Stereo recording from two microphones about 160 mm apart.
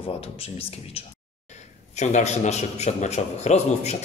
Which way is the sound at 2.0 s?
45° left (ahead or behind).